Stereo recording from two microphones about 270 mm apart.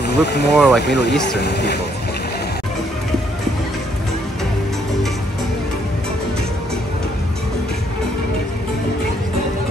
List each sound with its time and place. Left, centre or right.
0.0 s speech: left
0.6 s speech: centre
0.8 s speech: left